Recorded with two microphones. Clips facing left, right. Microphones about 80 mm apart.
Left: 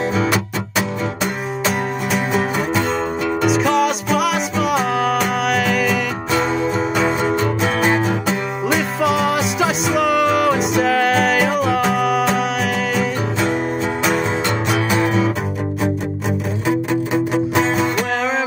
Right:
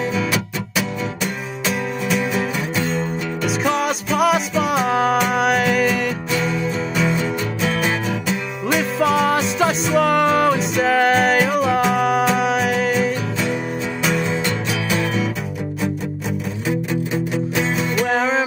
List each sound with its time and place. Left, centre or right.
0.1 s music: left
2.7 s music: left
3.5 s music: centre
6.3 s music: left
9.0 s music: centre
14.4 s music: left
17.3 s music: left
18.1 s music: centre